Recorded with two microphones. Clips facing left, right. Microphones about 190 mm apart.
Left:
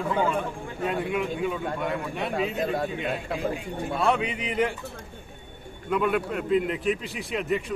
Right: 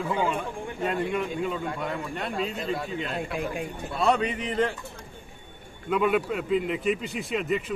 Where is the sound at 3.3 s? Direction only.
55° right (ahead or behind).